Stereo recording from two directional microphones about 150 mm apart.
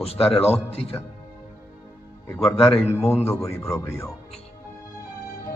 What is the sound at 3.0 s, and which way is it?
A man's voice, 15° left (ahead or behind).